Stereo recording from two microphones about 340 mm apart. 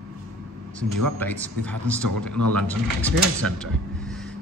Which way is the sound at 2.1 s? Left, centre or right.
Right.